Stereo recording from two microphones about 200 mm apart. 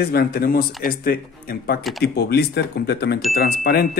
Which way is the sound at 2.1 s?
55° left (ahead or behind).